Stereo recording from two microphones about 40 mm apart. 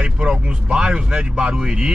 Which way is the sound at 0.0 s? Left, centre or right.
Right.